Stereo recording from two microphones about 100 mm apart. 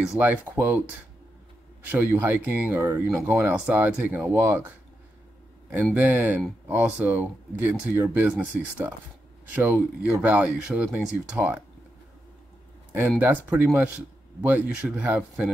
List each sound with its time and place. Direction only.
0.2 s speech: 20° right (ahead or behind)
1.9 s speech: 20° right (ahead or behind)
3.5 s speech: 15° right (ahead or behind)
5.9 s speech: 20° right (ahead or behind)
13.2 s speech: 20° right (ahead or behind)